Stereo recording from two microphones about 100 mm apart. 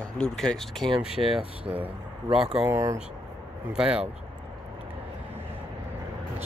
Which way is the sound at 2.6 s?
30° right (ahead or behind).